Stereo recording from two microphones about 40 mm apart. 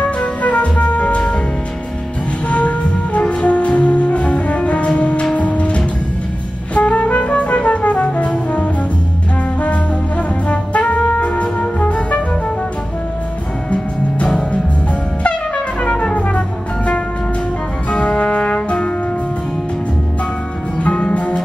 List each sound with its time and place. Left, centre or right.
0.0 s music: left
2.5 s music: left
6.7 s brass instrument: left
14.2 s music: left
17.9 s brass instrument: left
20.8 s music: left